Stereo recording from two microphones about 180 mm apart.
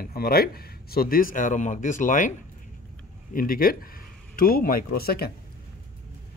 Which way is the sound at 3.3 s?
55° left (ahead or behind).